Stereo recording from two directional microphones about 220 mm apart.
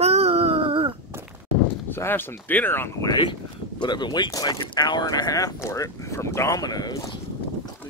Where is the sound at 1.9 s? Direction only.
10° left (ahead or behind).